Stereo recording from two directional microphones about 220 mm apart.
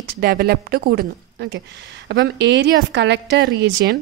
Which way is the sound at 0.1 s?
45° right (ahead or behind).